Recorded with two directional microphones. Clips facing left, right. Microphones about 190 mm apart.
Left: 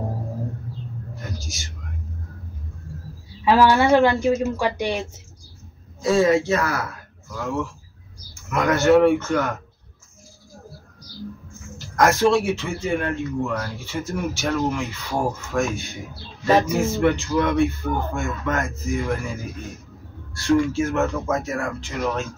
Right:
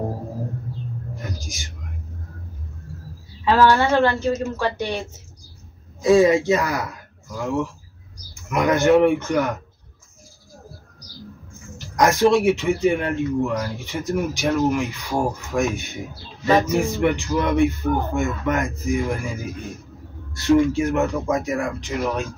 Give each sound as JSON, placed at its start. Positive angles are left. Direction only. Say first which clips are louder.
{"t": 3.4, "sound": "speech", "louder": "left 1 dB", "side_deg": 10}
{"t": 6.0, "sound": "speech", "louder": "right 3 dB", "side_deg": -15}
{"t": 11.9, "sound": "speech", "louder": "right 1 dB", "side_deg": -15}
{"t": 20.3, "sound": "speech", "louder": "right 2 dB", "side_deg": -20}